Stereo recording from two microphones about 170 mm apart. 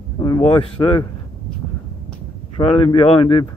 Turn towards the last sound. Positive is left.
turn(degrees=30)  # may be behind; listen again after turning